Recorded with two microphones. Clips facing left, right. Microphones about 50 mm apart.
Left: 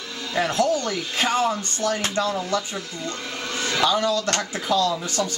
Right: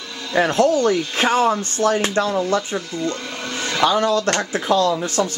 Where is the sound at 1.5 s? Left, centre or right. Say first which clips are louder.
Right 6 dB; right.